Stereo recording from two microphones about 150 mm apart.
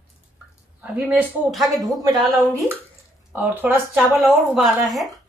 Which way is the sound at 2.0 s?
20° right (ahead or behind).